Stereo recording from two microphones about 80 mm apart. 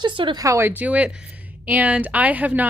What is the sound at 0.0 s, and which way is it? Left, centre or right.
Speech, right.